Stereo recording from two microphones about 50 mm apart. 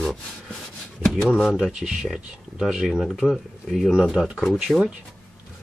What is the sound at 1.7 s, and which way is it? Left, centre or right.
Speech, centre.